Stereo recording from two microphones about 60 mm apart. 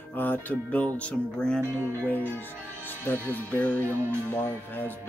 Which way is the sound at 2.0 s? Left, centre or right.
Left.